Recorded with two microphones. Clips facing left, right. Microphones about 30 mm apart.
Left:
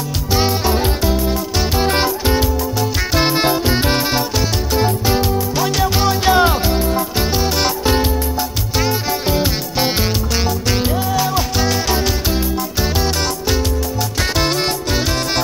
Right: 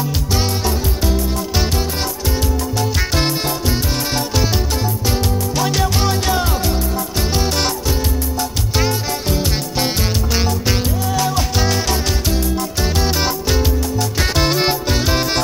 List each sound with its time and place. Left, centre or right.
0.3 s music: centre
2.0 s music: left
4.7 s music: centre
5.6 s music: centre
6.2 s music: left
7.3 s music: centre
9.3 s music: centre
10.3 s music: centre
13.0 s music: centre